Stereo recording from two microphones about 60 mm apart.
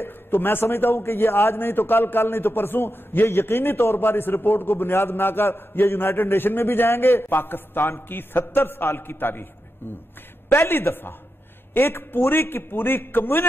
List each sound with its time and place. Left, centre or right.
0.0 s a man's voice: left
10.5 s a man's voice: left